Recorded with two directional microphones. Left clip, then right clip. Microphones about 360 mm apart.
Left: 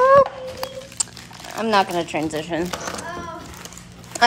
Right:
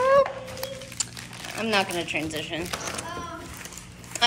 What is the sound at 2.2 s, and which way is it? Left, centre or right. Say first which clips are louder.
Speech: left 6 dB; centre.